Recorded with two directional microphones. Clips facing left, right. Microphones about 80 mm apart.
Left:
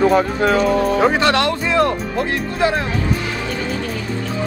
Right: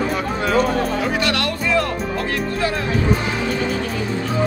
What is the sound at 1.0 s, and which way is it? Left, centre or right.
Music, left.